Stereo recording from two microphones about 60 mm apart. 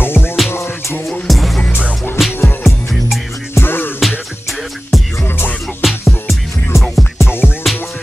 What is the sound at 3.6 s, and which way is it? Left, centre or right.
Music, left.